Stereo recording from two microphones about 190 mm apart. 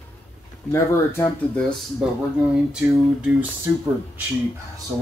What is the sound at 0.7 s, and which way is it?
Speech, 10° left (ahead or behind).